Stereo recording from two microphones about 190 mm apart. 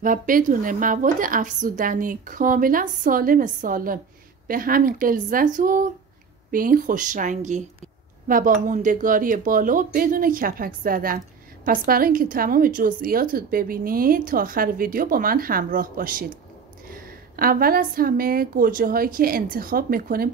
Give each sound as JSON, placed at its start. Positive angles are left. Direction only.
{"t": 0.0, "sound": "speech", "side_deg": -45}